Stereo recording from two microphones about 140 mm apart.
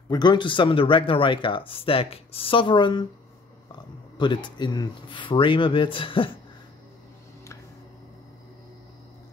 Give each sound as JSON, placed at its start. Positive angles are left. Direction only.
{"t": 0.1, "sound": "speech", "side_deg": 30}
{"t": 4.2, "sound": "speech", "side_deg": 35}